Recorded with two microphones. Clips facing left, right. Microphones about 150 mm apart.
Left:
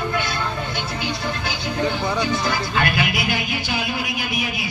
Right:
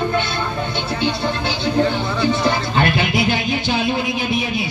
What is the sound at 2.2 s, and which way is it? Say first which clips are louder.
Music: right 5 dB; 25° right (ahead or behind).